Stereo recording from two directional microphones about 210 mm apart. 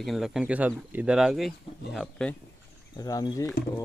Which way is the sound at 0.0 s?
Centre (ahead or behind).